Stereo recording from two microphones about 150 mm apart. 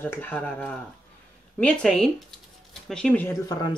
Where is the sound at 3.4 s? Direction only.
25° left (ahead or behind).